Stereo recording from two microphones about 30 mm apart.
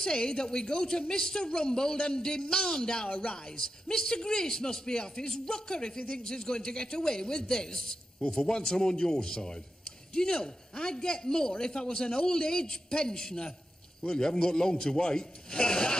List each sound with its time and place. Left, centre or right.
0.0 s a man's voice: left
3.1 s speech: left
3.5 s a man's voice: left